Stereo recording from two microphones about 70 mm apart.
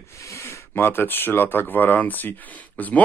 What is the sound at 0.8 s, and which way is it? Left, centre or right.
Speech, left.